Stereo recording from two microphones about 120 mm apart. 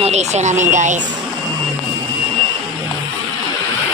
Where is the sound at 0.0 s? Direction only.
70° right (ahead or behind); by 1.0 s 90° right.